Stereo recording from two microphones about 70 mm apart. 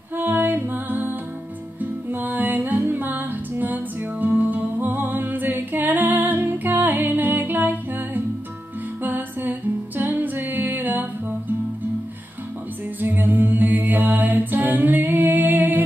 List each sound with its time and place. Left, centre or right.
0.2 s music: right
13.0 s music: right